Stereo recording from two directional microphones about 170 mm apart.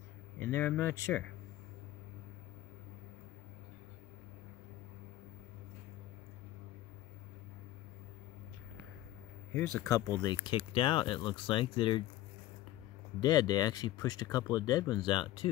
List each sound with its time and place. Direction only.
0.4 s speech: 15° left (ahead or behind)
9.5 s speech: 15° left (ahead or behind); by 12.0 s 30° left (ahead or behind)
13.2 s speech: 25° left (ahead or behind)